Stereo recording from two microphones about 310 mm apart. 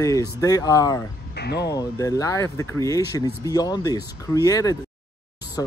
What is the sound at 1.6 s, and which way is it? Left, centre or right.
Speech, centre.